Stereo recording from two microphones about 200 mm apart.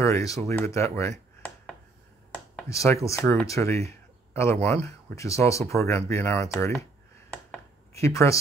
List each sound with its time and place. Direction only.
0.0 s speech: 15° left (ahead or behind)
1.1 s a sound: 5° left (ahead or behind)
2.3 s speech: 10° left (ahead or behind)
7.9 s speech: 15° left (ahead or behind)